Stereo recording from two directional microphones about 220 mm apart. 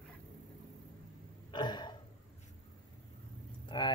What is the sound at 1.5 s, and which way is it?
Throat clearing, 20° left (ahead or behind).